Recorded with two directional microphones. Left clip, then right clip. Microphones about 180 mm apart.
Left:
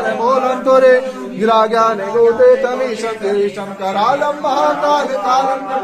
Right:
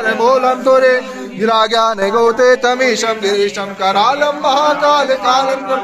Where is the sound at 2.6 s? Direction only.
40° right (ahead or behind).